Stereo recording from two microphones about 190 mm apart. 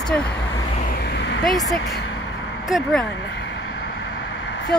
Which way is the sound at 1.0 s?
60° left (ahead or behind).